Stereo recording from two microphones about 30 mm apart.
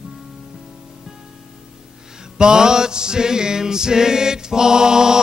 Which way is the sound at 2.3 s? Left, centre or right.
Right.